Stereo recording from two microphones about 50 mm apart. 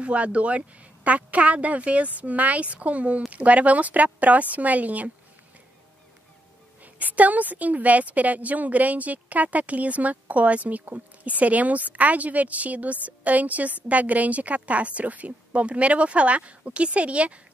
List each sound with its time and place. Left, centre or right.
0.0 s a woman's voice: right
6.8 s a woman's voice: right